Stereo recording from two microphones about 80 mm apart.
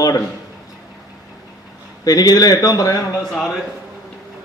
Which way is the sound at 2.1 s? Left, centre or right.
Left.